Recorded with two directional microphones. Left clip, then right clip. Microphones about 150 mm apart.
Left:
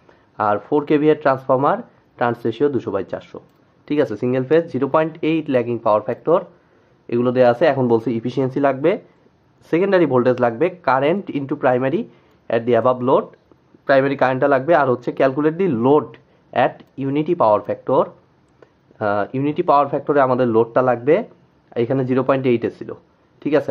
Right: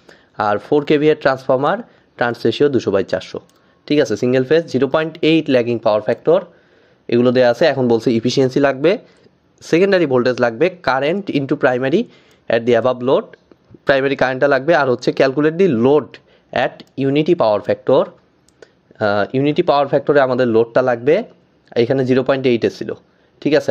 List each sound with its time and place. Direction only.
0.4 s speech: 35° right (ahead or behind)
13.8 s speech: 45° right (ahead or behind); by 22.9 s 25° right (ahead or behind)